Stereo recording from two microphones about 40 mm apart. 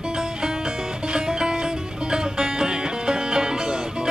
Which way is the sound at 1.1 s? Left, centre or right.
Centre.